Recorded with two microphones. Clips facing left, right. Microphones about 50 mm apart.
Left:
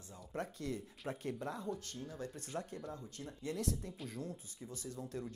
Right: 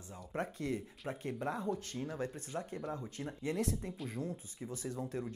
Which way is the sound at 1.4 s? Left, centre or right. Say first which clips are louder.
Right 5 dB; right.